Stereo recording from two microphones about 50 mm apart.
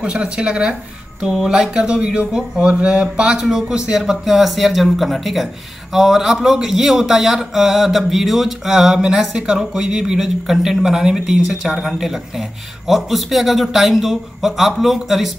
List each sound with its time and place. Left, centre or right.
0.0 s speech: centre